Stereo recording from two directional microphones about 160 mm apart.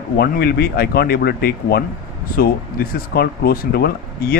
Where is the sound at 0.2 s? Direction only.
75° left (ahead or behind).